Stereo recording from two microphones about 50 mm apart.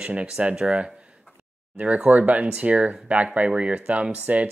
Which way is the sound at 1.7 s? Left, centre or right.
Right.